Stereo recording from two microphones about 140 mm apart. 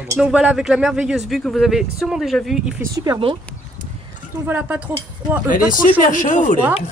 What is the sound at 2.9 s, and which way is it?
Speech, 25° right (ahead or behind).